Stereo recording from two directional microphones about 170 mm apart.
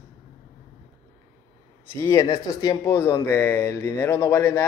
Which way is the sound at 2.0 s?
20° left (ahead or behind).